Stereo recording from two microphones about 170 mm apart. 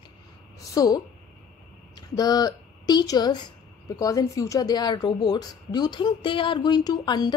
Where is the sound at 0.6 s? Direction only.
20° left (ahead or behind).